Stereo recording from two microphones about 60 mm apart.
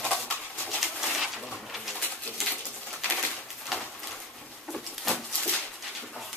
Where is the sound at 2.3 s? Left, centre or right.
Left.